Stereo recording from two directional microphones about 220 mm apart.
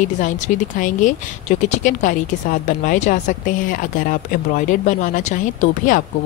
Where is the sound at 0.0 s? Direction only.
35° left (ahead or behind).